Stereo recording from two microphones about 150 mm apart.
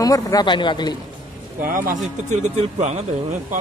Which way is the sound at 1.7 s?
65° right (ahead or behind).